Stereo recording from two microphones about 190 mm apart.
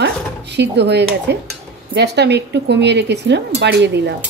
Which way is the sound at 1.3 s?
65° right (ahead or behind).